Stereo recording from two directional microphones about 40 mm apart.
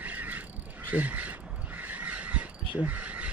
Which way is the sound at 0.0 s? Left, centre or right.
Right.